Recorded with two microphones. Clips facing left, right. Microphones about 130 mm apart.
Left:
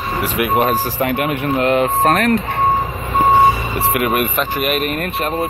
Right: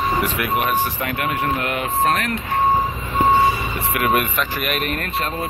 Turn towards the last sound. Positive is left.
turn(degrees=20)  # may be behind; listen again after turning